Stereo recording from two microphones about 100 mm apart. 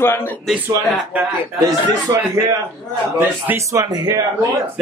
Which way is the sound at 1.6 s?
35° right (ahead or behind).